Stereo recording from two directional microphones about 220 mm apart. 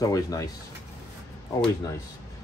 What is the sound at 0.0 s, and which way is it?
Speech, 15° left (ahead or behind).